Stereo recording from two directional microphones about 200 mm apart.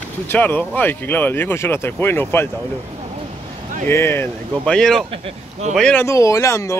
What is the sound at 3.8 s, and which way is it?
Speech, 10° left (ahead or behind).